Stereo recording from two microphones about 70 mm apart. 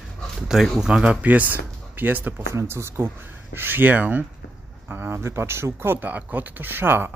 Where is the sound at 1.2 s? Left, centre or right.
Right.